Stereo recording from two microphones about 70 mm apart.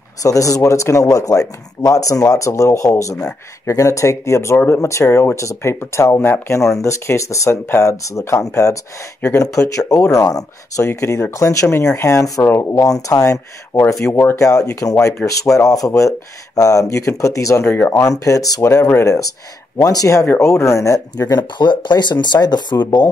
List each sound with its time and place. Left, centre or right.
0.2 s speech: left
6.5 s speech: left
10.9 s speech: left
12.7 s speech: left
14.4 s speech: left
17.6 s speech: left
17.9 s speech: left
20.3 s speech: left
21.4 s speech: left